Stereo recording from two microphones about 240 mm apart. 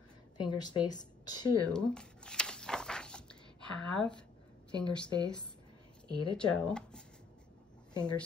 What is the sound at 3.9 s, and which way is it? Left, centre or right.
Speech, centre.